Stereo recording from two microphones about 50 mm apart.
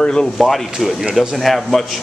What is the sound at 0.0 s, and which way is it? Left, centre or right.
Speech, centre.